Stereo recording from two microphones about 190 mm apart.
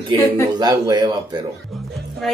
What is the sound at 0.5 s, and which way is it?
Speech, 20° right (ahead or behind).